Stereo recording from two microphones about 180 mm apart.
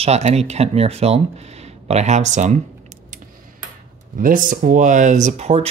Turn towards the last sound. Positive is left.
turn(degrees=-35)  # may be behind; listen again after turning